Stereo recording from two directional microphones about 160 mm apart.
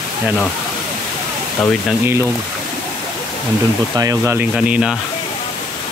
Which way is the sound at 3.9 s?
20° right (ahead or behind).